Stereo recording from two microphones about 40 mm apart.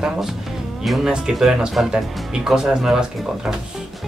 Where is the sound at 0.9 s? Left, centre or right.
Centre.